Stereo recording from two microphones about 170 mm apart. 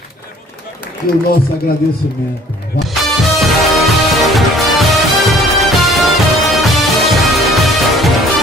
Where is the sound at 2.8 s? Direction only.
Centre (ahead or behind).